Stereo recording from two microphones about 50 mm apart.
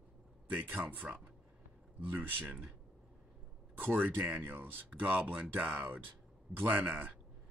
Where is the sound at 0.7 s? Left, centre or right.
Right.